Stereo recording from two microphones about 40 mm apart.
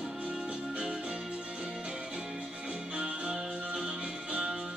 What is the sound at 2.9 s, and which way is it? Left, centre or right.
Music, right.